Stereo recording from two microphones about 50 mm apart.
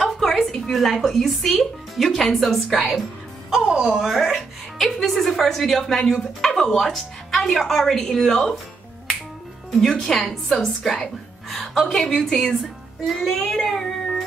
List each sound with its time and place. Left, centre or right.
0.2 s speech: centre
3.6 s speech: centre
9.9 s speech: centre
10.5 s a woman's voice: centre
11.5 s a sound: centre
11.9 s speech: centre
13.0 s child singing: centre